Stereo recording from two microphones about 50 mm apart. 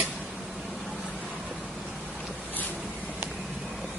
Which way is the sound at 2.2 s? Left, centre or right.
Centre.